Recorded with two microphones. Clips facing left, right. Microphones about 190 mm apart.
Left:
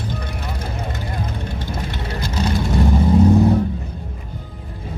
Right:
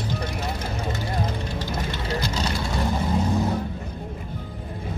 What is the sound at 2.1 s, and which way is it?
Vehicle, 50° left (ahead or behind).